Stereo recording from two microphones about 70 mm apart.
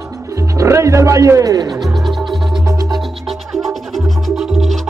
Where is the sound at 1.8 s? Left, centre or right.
Centre.